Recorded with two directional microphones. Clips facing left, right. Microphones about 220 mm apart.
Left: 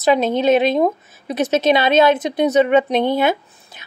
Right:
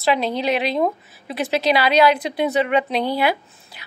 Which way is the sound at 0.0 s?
20° left (ahead or behind).